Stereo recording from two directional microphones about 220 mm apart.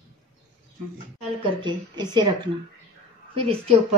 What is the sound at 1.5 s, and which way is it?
A woman's voice, 20° right (ahead or behind).